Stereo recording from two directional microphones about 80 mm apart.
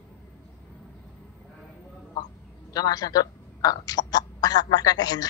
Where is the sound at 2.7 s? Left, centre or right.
Left.